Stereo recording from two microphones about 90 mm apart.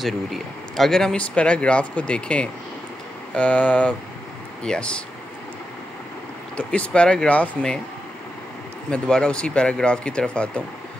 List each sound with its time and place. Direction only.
0.0 s speech: centre (ahead or behind)
6.5 s speech: 15° left (ahead or behind)
8.9 s speech: 10° left (ahead or behind)